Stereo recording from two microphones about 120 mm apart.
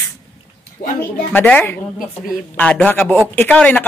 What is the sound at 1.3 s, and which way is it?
Speech, 15° left (ahead or behind).